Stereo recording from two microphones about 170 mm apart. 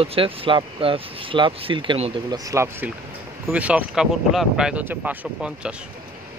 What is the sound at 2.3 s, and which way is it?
Speech, 20° right (ahead or behind).